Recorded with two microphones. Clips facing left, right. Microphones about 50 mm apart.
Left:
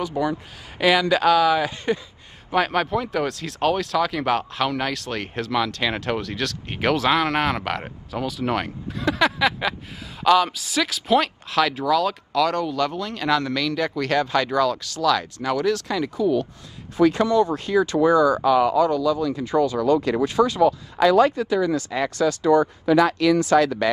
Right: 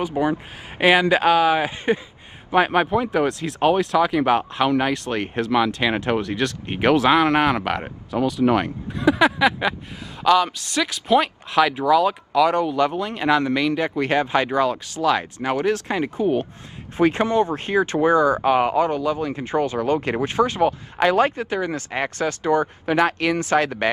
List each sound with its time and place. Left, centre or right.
0.2 s a man's voice: right
22.8 s speech: right